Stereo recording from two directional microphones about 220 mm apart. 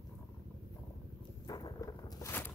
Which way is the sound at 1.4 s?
15° left (ahead or behind).